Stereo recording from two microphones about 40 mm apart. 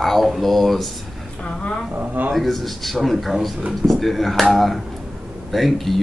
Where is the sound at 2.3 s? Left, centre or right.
Centre.